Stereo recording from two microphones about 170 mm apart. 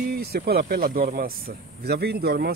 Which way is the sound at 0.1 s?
65° right (ahead or behind).